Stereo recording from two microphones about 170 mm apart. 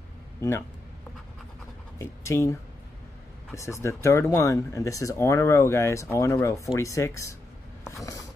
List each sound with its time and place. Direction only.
0.4 s a man's voice: 15° left (ahead or behind)
2.0 s speech: 15° left (ahead or behind)
3.5 s speech: 15° left (ahead or behind)
7.8 s a sound: 20° left (ahead or behind)